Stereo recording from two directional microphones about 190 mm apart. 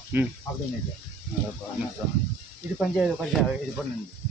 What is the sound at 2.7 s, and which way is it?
Speech, centre (ahead or behind).